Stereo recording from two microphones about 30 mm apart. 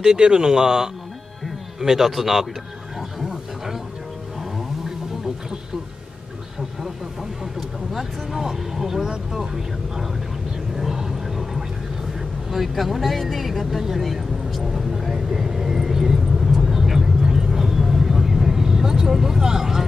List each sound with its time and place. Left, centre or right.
0.0 s speech: right
1.8 s a man's voice: centre
3.2 s wild animals: centre
7.9 s vehicle: centre
12.4 s speech: centre
14.0 s vehicle: centre